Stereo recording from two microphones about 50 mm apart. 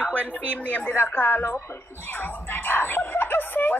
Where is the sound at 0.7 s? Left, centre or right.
Left.